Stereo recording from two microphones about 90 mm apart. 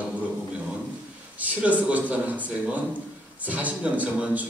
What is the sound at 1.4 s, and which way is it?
A man's voice, 15° right (ahead or behind).